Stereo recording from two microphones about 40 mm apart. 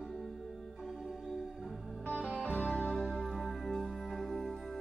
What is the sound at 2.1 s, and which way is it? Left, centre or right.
Music, left.